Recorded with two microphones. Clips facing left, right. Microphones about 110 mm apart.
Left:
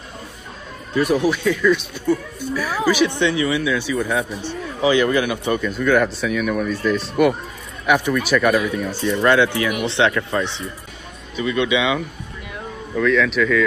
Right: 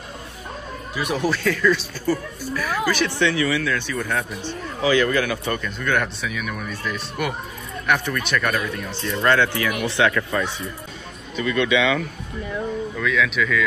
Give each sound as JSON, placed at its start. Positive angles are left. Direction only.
{"t": 1.1, "sound": "speech", "side_deg": 15}
{"t": 4.8, "sound": "speech", "side_deg": 20}
{"t": 5.6, "sound": "speech", "side_deg": 5}
{"t": 12.9, "sound": "speech", "side_deg": 0}